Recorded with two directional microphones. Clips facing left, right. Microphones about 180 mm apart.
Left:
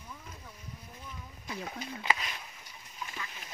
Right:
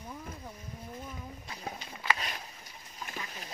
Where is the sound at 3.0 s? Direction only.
40° right (ahead or behind).